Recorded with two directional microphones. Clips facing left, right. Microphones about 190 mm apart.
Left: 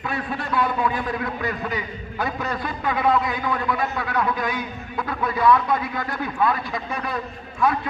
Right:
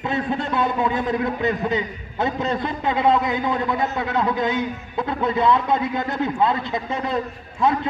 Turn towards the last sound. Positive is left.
turn(degrees=-25)  # may be behind; listen again after turning